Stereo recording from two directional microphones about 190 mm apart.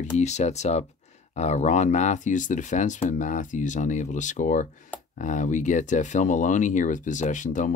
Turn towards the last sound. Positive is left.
turn(degrees=40)  # may be behind; listen again after turning